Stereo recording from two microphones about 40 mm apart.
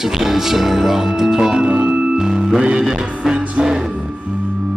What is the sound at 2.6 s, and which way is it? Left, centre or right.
Music, right.